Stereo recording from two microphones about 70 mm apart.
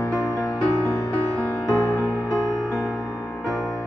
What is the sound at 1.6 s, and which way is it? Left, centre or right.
Music, left.